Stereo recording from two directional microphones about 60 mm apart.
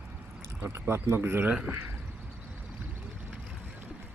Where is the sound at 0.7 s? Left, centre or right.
Right.